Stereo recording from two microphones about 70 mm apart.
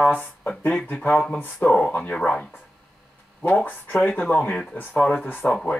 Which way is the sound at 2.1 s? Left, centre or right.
Centre.